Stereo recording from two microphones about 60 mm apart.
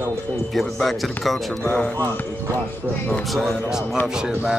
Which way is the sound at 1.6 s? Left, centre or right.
Centre.